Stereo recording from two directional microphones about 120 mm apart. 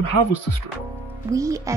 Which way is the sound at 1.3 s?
30° right (ahead or behind).